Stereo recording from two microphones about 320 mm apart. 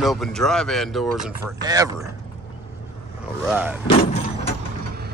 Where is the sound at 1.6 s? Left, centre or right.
Centre.